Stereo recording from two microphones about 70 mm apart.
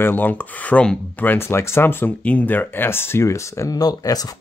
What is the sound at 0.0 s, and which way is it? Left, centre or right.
A man's voice, left.